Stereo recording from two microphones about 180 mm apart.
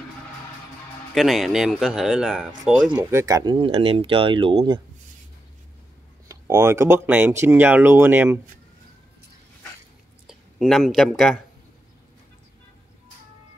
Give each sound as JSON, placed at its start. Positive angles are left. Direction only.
{"t": 1.1, "sound": "speech", "side_deg": 0}
{"t": 6.2, "sound": "speech", "side_deg": -15}
{"t": 10.2, "sound": "speech", "side_deg": 0}